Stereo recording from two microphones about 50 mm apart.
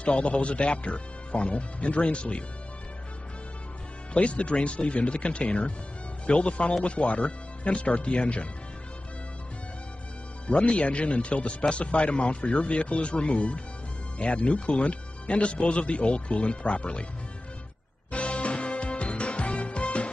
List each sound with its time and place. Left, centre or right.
0.0 s speech: left
4.1 s speech: left
10.4 s speech: left
18.1 s music: left